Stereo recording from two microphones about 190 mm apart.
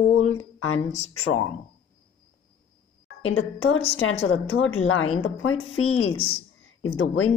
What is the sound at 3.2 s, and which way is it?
A woman's voice, 90° left.